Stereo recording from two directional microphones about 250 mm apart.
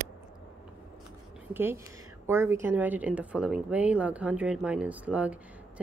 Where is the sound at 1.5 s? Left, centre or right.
Centre.